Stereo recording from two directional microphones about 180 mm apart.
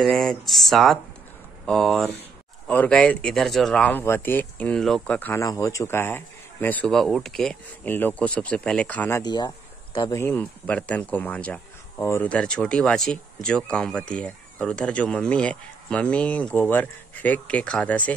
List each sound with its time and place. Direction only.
0.0 s speech: centre (ahead or behind)
9.2 s speech: 25° left (ahead or behind); by 18.1 s 5° left (ahead or behind)